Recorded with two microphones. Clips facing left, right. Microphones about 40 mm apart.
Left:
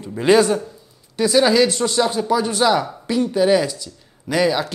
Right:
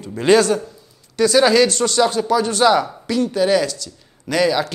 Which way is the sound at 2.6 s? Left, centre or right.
Centre.